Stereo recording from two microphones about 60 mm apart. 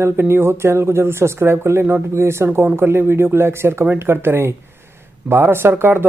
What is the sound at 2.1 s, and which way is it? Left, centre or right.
Speech, right.